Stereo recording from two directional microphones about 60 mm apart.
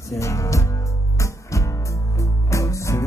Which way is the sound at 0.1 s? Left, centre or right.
Left.